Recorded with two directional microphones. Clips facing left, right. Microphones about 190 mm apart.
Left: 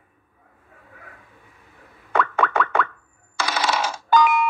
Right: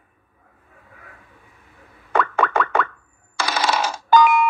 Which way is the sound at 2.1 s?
45° right (ahead or behind).